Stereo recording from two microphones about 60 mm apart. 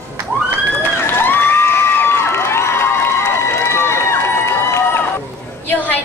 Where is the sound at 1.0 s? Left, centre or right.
Left.